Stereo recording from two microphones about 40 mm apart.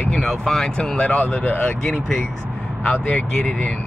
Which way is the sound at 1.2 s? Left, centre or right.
Left.